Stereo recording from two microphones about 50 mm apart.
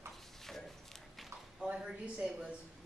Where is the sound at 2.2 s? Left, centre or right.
Centre.